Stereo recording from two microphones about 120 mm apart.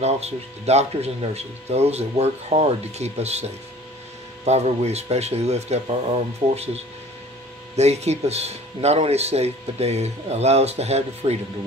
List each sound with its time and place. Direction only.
0.0 s speech: 65° right (ahead or behind)
4.5 s speech: 65° right (ahead or behind)